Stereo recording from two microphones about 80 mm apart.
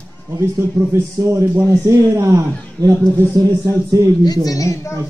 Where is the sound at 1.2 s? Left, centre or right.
Right.